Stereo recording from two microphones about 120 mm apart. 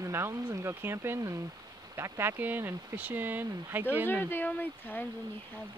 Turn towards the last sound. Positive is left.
turn(degrees=15)  # may be behind; listen again after turning